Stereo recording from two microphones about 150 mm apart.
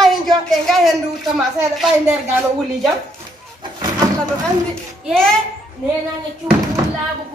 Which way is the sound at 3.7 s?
25° right (ahead or behind).